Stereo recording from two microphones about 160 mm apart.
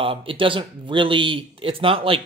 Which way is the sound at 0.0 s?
35° right (ahead or behind).